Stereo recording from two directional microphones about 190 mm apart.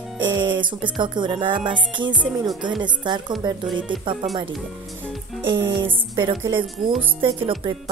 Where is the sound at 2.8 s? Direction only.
25° right (ahead or behind).